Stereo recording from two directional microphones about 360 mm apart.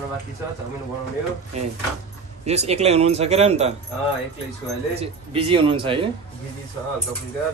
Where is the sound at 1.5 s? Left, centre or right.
Centre.